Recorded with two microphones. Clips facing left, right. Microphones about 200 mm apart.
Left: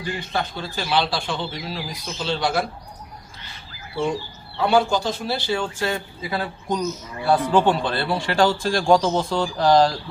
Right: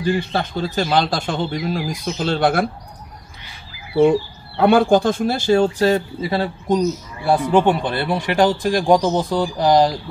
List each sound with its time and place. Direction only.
0.3 s speech: 35° right (ahead or behind); by 2.6 s 50° right (ahead or behind)
4.1 s speech: 55° right (ahead or behind); by 9.9 s 15° right (ahead or behind)